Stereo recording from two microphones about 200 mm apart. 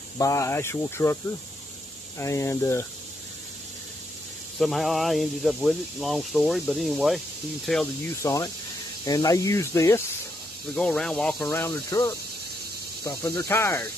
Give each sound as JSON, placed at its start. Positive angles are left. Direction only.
{"t": 0.2, "sound": "speech", "side_deg": 15}
{"t": 2.1, "sound": "speech", "side_deg": 15}
{"t": 4.6, "sound": "speech", "side_deg": 0}
{"t": 8.2, "sound": "speech", "side_deg": 15}
{"t": 10.7, "sound": "speech", "side_deg": 5}